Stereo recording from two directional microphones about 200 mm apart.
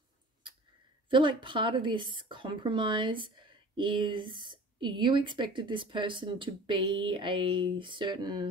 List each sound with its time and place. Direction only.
1.1 s a woman's voice: 25° right (ahead or behind)